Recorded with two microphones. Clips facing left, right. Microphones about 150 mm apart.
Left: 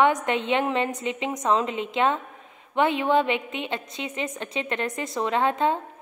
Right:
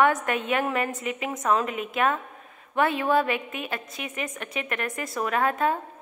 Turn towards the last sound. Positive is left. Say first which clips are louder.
# left 1 dB
turn(degrees=25)  # may be behind; listen again after turning